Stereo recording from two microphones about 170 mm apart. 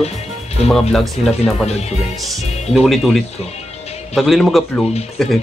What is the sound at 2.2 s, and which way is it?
Speech, centre (ahead or behind).